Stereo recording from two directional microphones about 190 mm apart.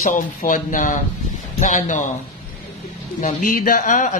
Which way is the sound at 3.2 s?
45° left (ahead or behind).